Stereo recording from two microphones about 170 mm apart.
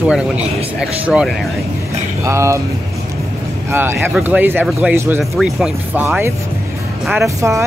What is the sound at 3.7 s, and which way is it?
Speech, 15° right (ahead or behind).